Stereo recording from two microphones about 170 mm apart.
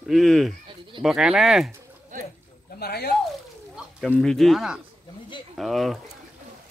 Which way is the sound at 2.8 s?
70° left (ahead or behind).